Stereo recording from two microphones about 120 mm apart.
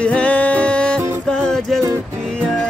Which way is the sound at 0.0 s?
10° left (ahead or behind).